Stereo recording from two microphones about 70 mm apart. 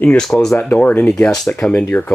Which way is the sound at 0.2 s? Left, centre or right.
Centre.